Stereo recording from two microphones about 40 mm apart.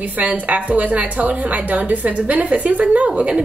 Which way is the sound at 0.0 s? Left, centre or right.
Right.